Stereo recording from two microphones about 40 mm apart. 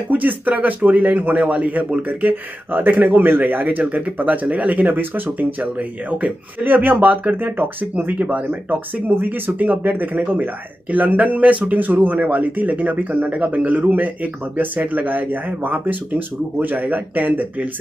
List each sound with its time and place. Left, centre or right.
0.1 s speech: right
2.0 s speech: right
3.8 s speech: right
5.6 s speech: right
6.6 s speech: right
7.9 s speech: right
11.7 s speech: right